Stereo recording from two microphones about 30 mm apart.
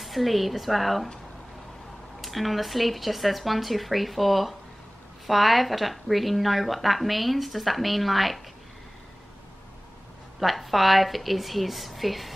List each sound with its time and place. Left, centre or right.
0.0 s a woman's voice: centre
2.2 s a woman's voice: centre
10.4 s a woman's voice: centre